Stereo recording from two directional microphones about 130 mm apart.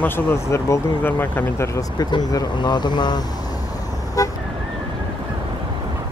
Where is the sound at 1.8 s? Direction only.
30° left (ahead or behind).